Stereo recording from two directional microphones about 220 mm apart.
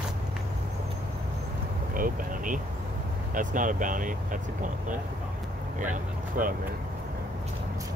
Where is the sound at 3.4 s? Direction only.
35° right (ahead or behind).